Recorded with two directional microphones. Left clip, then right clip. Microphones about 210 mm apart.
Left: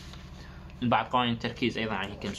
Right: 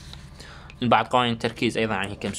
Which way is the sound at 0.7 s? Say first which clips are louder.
Right 6 dB; 55° right (ahead or behind).